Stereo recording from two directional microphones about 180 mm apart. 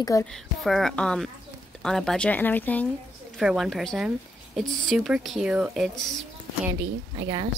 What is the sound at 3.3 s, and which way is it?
Speech, centre (ahead or behind).